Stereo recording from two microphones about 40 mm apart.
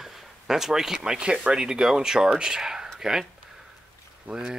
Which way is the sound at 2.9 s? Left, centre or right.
Centre.